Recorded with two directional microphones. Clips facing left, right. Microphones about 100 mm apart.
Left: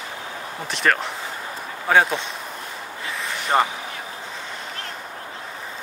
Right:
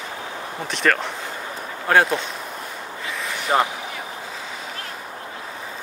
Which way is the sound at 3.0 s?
Centre (ahead or behind).